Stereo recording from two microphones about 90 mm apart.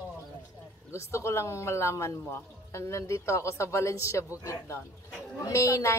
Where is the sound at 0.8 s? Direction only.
30° left (ahead or behind).